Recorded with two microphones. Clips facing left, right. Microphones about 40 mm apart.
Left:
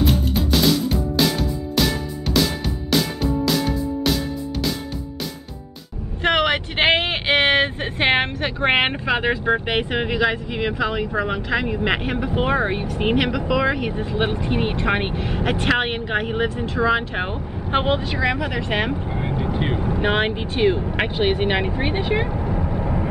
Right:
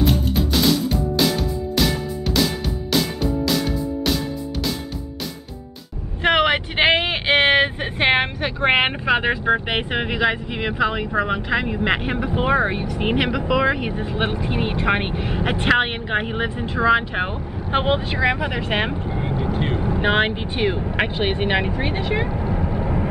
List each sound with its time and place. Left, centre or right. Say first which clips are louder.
0.0 s music: right 1 dB; centre
6.2 s vehicle: right 1 dB; centre
6.8 s vehicle: even; centre
9.5 s speech: even; centre
17.8 s speech: right 1 dB; centre
19.5 s vehicle: even; centre
19.9 s speech: right 2 dB; centre
22.3 s vehicle: even; right